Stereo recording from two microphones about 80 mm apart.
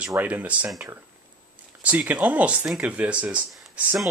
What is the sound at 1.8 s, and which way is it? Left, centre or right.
Speech, centre.